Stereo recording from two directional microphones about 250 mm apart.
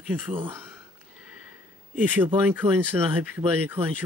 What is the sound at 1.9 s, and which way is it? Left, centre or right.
Speech, centre.